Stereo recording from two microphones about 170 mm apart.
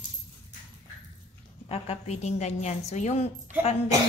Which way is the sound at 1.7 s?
40° left (ahead or behind).